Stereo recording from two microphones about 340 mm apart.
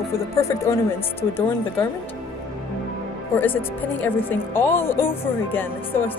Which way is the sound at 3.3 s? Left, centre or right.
Centre.